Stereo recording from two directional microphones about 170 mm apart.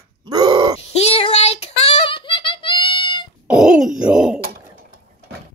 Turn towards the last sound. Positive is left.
turn(degrees=-5)  # may be behind; listen again after turning